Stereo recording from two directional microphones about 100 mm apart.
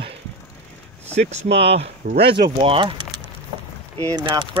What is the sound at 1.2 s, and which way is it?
Speech, 90° right.